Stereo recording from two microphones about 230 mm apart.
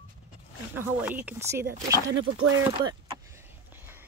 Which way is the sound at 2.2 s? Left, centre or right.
Right.